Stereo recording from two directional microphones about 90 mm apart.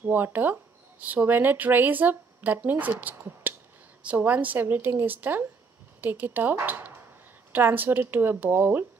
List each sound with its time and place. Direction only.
0.0 s speech: 20° right (ahead or behind)